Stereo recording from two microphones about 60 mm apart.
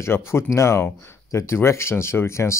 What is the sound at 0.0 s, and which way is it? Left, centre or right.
Speech, left.